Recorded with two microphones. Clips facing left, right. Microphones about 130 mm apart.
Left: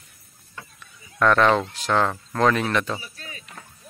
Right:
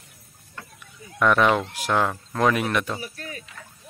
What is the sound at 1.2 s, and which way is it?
Speech, 10° right (ahead or behind).